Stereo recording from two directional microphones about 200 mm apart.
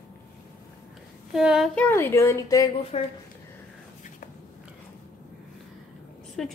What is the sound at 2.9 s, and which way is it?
Speech, 30° left (ahead or behind).